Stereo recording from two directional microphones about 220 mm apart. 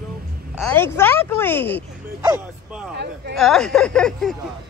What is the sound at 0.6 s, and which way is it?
Speech, 5° left (ahead or behind).